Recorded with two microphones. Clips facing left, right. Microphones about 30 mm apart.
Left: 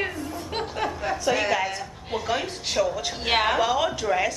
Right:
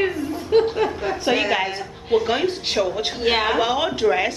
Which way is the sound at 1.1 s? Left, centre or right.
Right.